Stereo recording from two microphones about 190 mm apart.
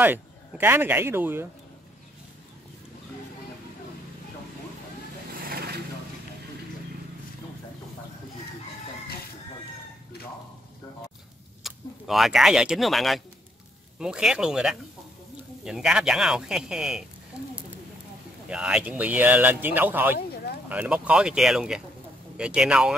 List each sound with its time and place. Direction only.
0.0 s speech: 10° right (ahead or behind)
5.4 s a sound: 55° right (ahead or behind)
11.6 s speech: centre (ahead or behind)
18.5 s speech: 5° right (ahead or behind)